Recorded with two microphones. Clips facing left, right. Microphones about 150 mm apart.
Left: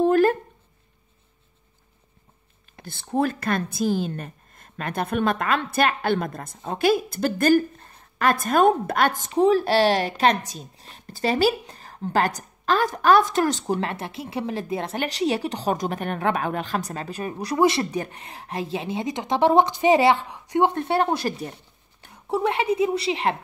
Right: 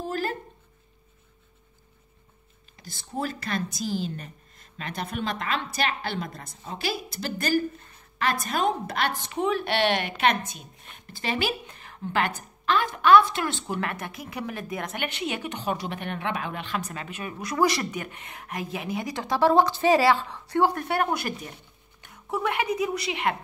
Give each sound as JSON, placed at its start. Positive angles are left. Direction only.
{"t": 0.0, "sound": "a sound", "side_deg": 55}
{"t": 2.7, "sound": "a woman's voice", "side_deg": 55}
{"t": 13.7, "sound": "a woman's voice", "side_deg": 30}